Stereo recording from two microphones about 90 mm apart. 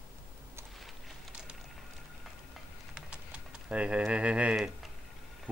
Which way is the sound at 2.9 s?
10° right (ahead or behind).